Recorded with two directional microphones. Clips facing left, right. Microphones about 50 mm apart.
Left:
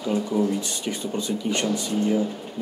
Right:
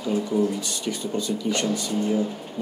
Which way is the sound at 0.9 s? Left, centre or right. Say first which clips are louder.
Right 1 dB; left.